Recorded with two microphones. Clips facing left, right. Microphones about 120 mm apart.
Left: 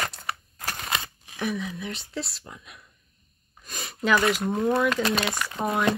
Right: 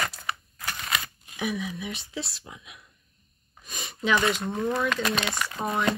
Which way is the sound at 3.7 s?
Centre (ahead or behind).